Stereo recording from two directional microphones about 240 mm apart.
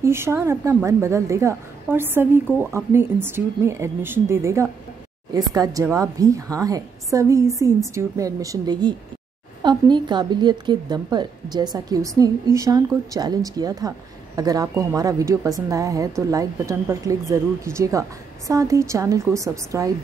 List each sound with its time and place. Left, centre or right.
0.0 s a woman's voice: centre